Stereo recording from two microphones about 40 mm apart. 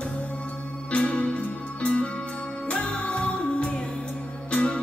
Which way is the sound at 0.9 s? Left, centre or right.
Left.